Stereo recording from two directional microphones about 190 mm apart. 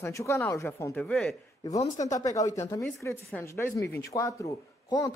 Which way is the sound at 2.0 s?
20° left (ahead or behind).